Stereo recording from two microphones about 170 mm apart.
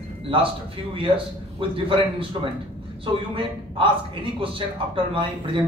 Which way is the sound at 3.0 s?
30° right (ahead or behind).